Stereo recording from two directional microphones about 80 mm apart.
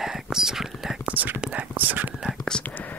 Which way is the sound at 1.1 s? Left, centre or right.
Right.